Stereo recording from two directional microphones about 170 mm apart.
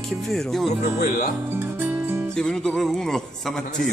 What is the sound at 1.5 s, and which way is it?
Music, 15° right (ahead or behind).